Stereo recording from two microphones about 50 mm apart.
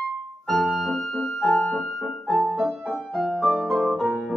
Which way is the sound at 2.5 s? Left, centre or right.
Right.